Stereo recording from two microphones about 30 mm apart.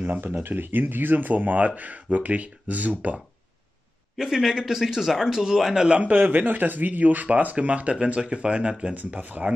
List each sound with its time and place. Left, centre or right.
0.0 s speech: right
4.2 s speech: centre
6.0 s speech: right
7.5 s speech: right
9.1 s speech: right